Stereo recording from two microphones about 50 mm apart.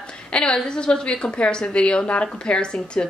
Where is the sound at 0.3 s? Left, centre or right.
Centre.